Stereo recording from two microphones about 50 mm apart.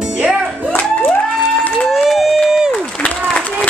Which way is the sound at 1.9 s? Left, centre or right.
Centre.